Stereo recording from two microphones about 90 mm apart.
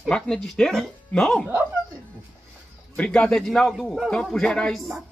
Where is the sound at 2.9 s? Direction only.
10° left (ahead or behind).